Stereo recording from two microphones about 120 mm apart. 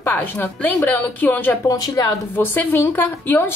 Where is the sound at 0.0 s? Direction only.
15° left (ahead or behind).